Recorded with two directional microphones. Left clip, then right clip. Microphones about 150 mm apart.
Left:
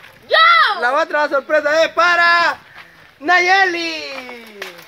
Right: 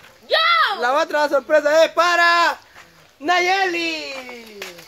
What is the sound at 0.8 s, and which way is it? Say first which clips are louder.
Speech: left 2 dB; 60° right (ahead or behind).